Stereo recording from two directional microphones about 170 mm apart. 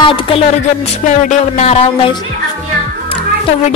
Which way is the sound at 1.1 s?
40° left (ahead or behind).